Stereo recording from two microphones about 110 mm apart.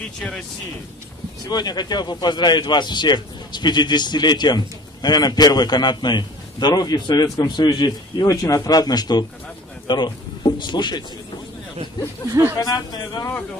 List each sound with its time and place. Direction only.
1.5 s speech: 40° left (ahead or behind)
8.3 s a man's voice: 30° left (ahead or behind)
12.3 s speech: 25° right (ahead or behind)
12.5 s speech: 35° left (ahead or behind)